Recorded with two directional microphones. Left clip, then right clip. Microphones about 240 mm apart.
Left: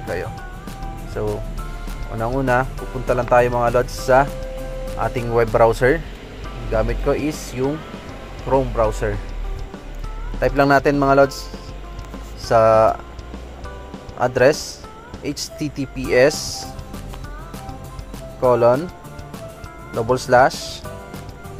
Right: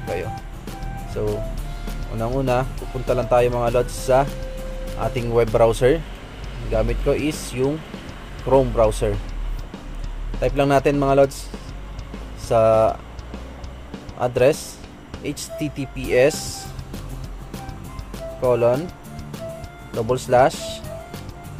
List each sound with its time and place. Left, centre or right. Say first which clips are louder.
1.2 s speech: even; centre
10.4 s speech: left 3 dB; centre
14.1 s speech: left 2 dB; centre
18.4 s speech: left 3 dB; centre
20.0 s speech: left 2 dB; centre